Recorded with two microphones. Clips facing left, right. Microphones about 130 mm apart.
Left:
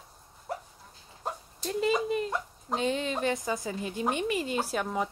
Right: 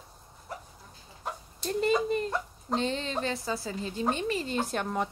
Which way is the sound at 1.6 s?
5° left (ahead or behind).